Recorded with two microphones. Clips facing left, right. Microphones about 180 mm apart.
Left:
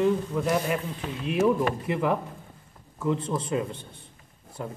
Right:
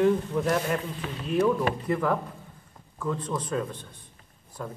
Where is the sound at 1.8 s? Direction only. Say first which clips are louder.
Even; 10° left (ahead or behind).